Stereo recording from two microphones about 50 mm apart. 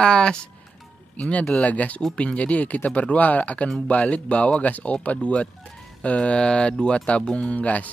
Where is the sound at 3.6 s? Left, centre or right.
Centre.